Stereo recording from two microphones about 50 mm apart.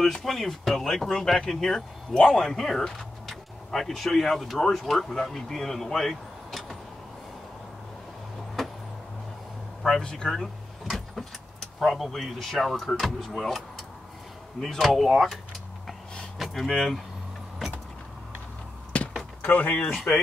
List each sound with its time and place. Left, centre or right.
0.0 s speech: centre
9.8 s speech: centre
10.9 s vehicle: centre
12.1 s speech: centre
16.4 s speech: centre
18.9 s door: left
19.4 s speech: left